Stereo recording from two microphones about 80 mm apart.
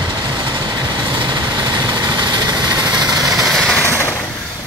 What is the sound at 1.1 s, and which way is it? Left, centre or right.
Vehicle, right.